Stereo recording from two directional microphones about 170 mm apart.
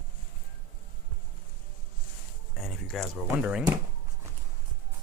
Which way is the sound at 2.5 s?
Centre (ahead or behind).